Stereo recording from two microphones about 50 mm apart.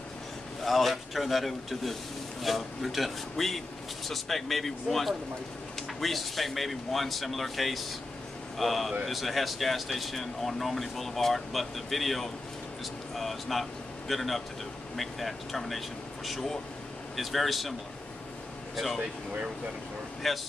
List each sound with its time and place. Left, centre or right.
0.7 s speech: centre
18.9 s speech: right
20.2 s speech: centre